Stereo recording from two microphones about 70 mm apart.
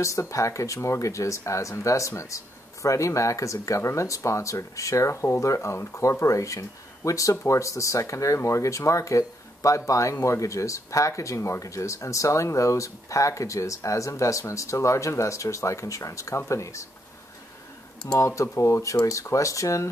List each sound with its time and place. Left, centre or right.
0.0 s speech: left
18.2 s speech: left